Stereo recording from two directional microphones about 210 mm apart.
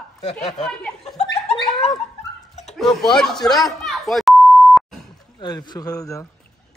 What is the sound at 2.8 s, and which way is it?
Beep, centre (ahead or behind).